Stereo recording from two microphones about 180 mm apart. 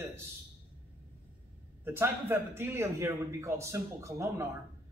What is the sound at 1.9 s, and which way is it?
A man's voice, 10° right (ahead or behind).